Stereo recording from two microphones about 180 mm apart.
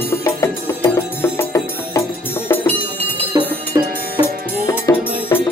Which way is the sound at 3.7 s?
15° right (ahead or behind).